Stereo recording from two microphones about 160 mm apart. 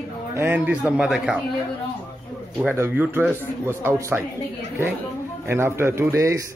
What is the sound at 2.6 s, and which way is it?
A man's voice, 10° right (ahead or behind).